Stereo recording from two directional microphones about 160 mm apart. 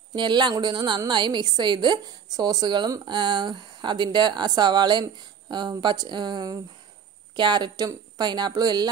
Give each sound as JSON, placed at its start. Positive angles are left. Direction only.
{"t": 0.1, "sound": "a woman's voice", "side_deg": -30}